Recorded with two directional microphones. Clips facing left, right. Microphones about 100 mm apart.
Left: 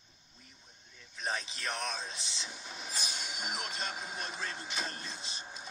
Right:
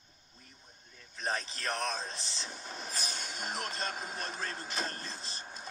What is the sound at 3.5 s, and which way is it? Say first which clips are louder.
Speech: right 4 dB; 40° right (ahead or behind).